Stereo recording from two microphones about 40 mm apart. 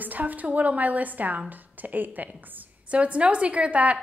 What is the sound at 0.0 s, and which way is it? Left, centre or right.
A woman's voice, right.